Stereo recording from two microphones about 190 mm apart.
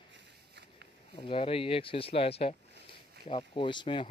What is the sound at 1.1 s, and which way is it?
Speech, 25° left (ahead or behind).